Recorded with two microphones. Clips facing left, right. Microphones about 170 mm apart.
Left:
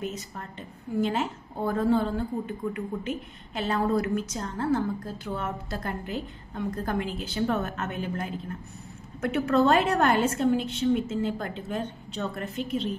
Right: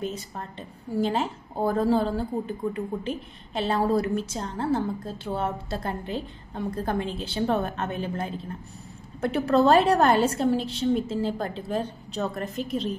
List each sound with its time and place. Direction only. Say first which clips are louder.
0.0 s a woman's voice: right 2 dB; 30° right (ahead or behind)